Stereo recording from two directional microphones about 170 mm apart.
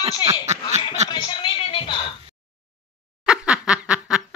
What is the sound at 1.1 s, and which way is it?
Music, 25° left (ahead or behind).